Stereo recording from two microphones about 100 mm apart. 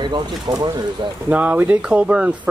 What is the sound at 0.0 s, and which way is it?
Speech, 45° right (ahead or behind).